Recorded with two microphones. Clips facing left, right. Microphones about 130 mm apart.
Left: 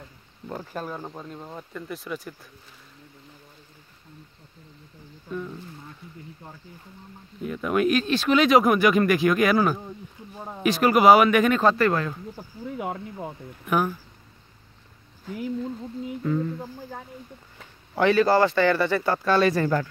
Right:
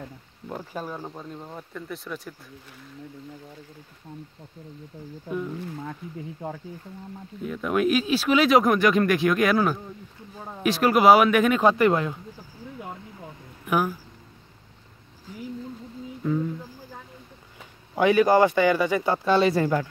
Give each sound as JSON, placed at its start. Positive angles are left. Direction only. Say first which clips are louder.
{"t": 0.5, "sound": "speech", "louder": "even", "side_deg": -5}
{"t": 7.4, "sound": "speech", "louder": "left 1 dB", "side_deg": 0}
{"t": 11.6, "sound": "speech", "louder": "right 1 dB", "side_deg": -15}
{"t": 12.7, "sound": "speech", "louder": "left 8 dB", "side_deg": 65}
{"t": 13.7, "sound": "speech", "louder": "even", "side_deg": -5}
{"t": 16.2, "sound": "speech", "louder": "even", "side_deg": -5}
{"t": 17.9, "sound": "speech", "louder": "right 1 dB", "side_deg": -15}
{"t": 19.6, "sound": "speech", "louder": "even", "side_deg": -10}